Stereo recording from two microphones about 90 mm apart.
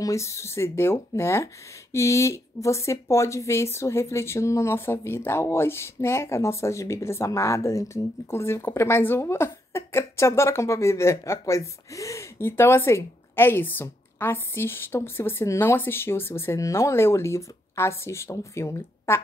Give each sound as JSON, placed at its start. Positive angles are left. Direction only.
{"t": 0.0, "sound": "speech", "side_deg": 35}